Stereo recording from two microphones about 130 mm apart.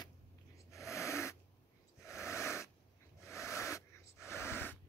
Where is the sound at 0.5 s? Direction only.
25° left (ahead or behind).